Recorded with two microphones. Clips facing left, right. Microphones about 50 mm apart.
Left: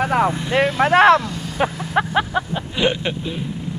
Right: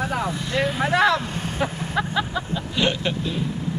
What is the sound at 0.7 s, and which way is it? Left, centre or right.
Speech, left.